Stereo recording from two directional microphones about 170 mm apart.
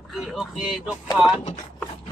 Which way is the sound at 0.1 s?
Centre (ahead or behind).